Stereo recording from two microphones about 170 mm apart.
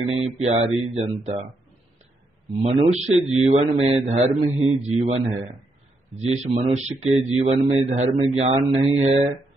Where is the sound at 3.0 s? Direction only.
5° right (ahead or behind).